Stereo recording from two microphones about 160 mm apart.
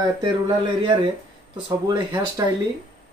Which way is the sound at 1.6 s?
30° right (ahead or behind).